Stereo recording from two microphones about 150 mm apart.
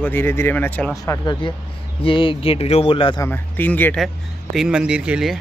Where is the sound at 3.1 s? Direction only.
15° left (ahead or behind).